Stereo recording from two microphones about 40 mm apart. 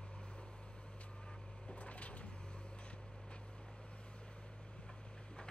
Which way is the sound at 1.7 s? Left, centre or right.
Left.